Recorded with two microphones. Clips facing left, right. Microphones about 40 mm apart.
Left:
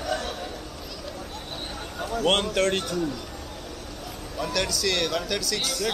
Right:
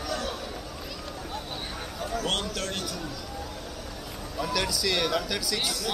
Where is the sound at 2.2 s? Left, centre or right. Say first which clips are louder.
Left 10 dB; centre.